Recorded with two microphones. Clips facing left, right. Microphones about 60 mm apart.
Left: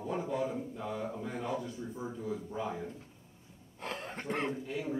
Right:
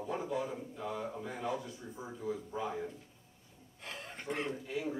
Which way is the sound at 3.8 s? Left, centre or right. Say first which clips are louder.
Left 6 dB; left.